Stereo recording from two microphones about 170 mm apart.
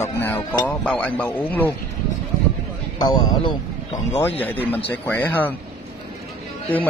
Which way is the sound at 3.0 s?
25° left (ahead or behind).